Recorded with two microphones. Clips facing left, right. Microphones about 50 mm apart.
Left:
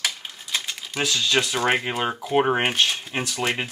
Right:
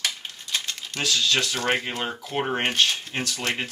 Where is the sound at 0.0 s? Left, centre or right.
Centre.